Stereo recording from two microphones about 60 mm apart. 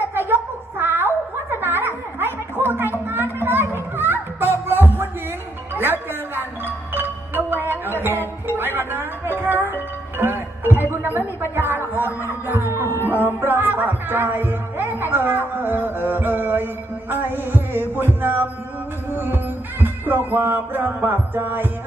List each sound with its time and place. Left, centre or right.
0.3 s a sound: right
3.4 s music: right
11.0 s a sound: right
11.5 s music: right
18.2 s mantra: right
19.1 s music: right